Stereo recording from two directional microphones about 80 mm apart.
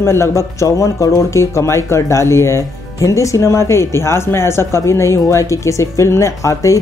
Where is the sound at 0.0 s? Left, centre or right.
Left.